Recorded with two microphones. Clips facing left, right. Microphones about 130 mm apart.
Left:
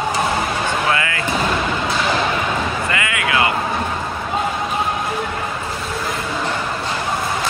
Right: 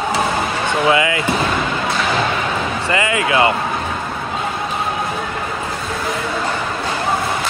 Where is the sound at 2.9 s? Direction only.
30° right (ahead or behind).